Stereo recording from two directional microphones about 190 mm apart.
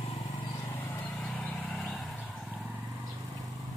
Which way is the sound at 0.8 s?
10° left (ahead or behind).